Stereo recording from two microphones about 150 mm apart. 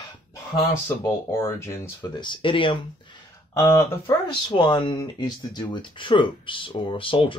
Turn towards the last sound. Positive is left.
turn(degrees=35)  # may be behind; listen again after turning